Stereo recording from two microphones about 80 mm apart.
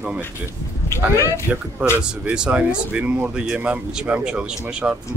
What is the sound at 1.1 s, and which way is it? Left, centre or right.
Speech, left.